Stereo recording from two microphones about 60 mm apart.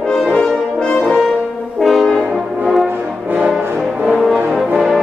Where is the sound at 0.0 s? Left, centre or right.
Centre.